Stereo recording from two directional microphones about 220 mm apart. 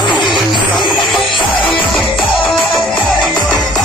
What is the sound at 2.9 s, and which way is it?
Music, 20° left (ahead or behind).